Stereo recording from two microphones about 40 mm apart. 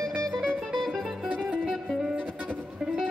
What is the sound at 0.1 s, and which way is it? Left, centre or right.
Music, centre.